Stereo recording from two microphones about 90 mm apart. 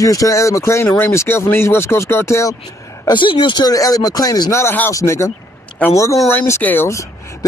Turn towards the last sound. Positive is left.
turn(degrees=20)  # may be behind; listen again after turning